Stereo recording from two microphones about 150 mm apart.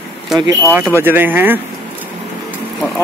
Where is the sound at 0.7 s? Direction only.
15° right (ahead or behind).